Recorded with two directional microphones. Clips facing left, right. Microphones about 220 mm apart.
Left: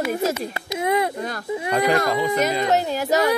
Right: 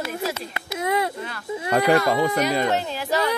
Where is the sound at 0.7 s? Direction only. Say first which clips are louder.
Left 2 dB; 20° left (ahead or behind).